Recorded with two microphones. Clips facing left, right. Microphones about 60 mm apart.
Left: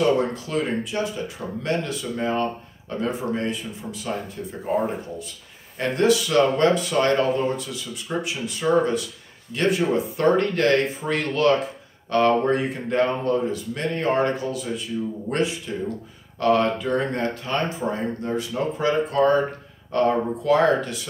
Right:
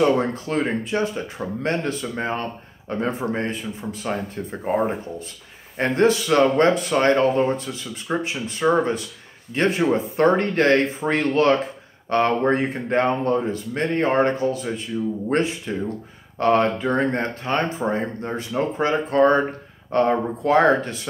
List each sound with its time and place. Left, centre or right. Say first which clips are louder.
0.0 s speech: right 2 dB; right